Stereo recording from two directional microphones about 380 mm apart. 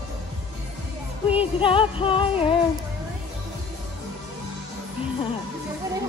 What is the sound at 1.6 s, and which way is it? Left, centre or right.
Speech, centre.